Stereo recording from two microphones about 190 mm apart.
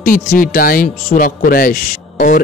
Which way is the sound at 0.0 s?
50° left (ahead or behind).